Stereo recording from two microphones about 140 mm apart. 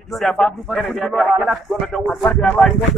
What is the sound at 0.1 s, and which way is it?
A man's voice, centre (ahead or behind).